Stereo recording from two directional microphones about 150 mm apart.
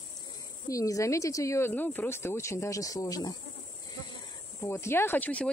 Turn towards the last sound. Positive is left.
turn(degrees=10)  # may be behind; listen again after turning